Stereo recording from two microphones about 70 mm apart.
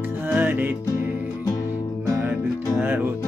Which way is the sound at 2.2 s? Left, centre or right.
Right.